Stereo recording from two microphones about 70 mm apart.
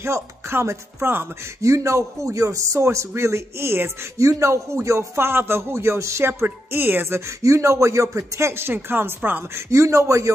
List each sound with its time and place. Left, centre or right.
0.0 s speech: right
4.2 s speech: right
6.4 s speech: right